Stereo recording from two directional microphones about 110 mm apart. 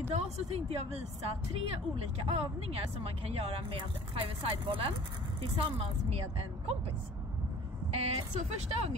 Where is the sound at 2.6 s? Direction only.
65° right (ahead or behind).